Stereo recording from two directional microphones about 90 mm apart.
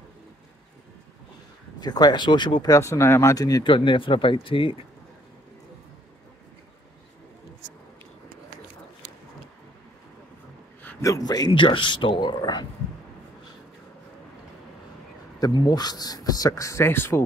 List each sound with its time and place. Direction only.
1.8 s speech: 50° left (ahead or behind)
2.7 s speech: 35° left (ahead or behind)
3.6 s speech: 70° left (ahead or behind)
11.0 s a man's voice: 40° left (ahead or behind)
11.5 s speech: 65° left (ahead or behind); by 12.6 s 50° left (ahead or behind)
15.3 s speech: 50° left (ahead or behind); by 17.2 s 25° left (ahead or behind)